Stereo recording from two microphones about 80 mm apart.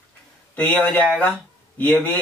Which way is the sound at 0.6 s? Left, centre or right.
Centre.